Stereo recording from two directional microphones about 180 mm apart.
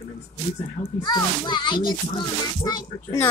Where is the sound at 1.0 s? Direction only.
25° left (ahead or behind).